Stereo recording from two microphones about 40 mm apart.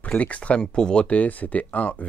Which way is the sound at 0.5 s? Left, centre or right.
Left.